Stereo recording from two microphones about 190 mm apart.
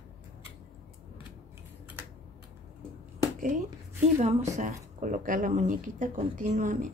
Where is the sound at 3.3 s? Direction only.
45° right (ahead or behind).